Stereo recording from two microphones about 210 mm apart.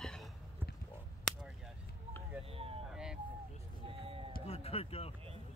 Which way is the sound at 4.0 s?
25° right (ahead or behind).